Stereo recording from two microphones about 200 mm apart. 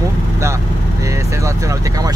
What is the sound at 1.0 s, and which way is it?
Speech, 15° right (ahead or behind).